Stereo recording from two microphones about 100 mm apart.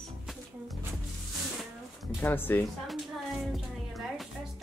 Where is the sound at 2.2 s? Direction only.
20° left (ahead or behind).